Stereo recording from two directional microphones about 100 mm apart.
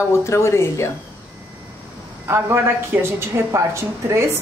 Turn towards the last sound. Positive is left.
turn(degrees=-30)  # may be behind; listen again after turning